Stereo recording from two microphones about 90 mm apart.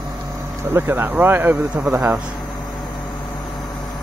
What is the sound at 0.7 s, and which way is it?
Speech, 25° right (ahead or behind).